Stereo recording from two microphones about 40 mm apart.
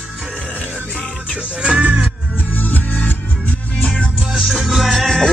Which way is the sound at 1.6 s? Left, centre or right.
Right.